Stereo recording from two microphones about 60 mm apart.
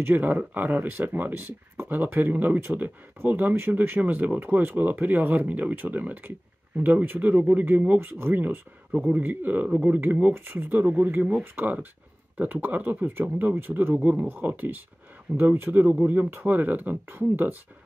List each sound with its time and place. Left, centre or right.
0.0 s speech: right
14.0 s speech: right